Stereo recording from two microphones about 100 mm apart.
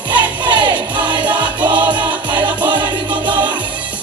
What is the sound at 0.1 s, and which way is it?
Music, 50° right (ahead or behind).